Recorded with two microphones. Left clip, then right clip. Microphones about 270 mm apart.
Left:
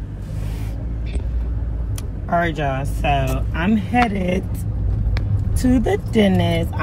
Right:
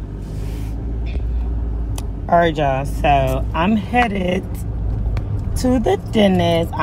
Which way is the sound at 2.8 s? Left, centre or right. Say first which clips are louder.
Right 5 dB; centre.